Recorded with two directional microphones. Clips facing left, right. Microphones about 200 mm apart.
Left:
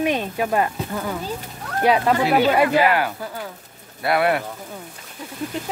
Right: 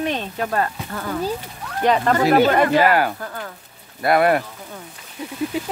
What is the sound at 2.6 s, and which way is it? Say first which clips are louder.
Speech: right 1 dB; 45° right (ahead or behind).